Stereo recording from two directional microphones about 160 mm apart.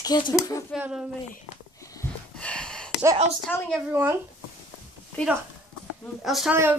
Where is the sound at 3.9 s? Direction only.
10° right (ahead or behind).